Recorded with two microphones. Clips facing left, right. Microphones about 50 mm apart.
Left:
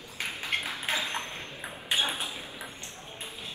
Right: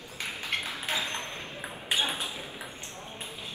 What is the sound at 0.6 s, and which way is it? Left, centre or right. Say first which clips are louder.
Ping: left 1 dB; left.